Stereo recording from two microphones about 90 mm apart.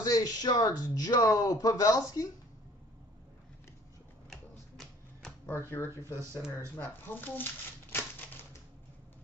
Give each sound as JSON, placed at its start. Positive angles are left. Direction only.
{"t": 0.0, "sound": "speech", "side_deg": 45}
{"t": 4.3, "sound": "typewriter", "side_deg": 5}
{"t": 5.9, "sound": "speech", "side_deg": -30}
{"t": 6.8, "sound": "speech", "side_deg": 25}
{"t": 7.9, "sound": "typewriter", "side_deg": 25}